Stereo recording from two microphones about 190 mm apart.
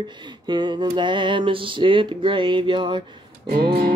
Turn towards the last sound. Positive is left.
turn(degrees=-55)  # may be behind; listen again after turning